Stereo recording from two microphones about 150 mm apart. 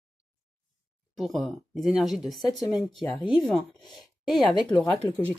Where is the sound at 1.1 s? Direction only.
Centre (ahead or behind).